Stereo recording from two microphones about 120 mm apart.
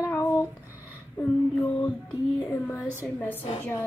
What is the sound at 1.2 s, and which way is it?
Female singing, 15° left (ahead or behind).